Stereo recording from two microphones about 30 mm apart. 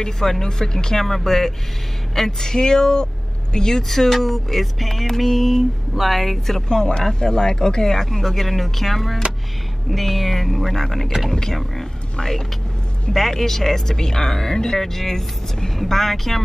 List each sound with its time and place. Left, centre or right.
0.0 s speech: centre
1.0 s speech: centre
3.8 s speech: centre
6.7 s speech: left; by 16.3 s centre